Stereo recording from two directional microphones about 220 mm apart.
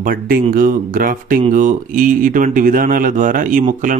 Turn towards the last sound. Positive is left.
turn(degrees=-35)  # may be behind; listen again after turning